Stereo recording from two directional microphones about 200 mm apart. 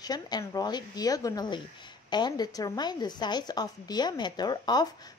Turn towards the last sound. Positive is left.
turn(degrees=20)  # may be behind; listen again after turning